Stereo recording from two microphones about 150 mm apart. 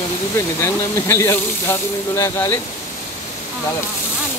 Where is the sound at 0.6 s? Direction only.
20° left (ahead or behind).